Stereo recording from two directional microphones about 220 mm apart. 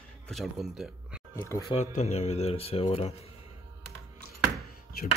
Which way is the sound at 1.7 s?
30° left (ahead or behind).